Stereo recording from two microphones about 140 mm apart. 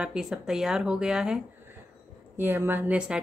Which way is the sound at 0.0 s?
5° right (ahead or behind).